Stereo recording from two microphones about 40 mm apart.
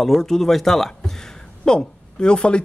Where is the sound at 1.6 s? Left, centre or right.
Centre.